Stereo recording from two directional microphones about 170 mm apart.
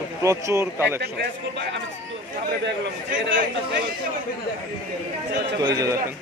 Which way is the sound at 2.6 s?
90° right.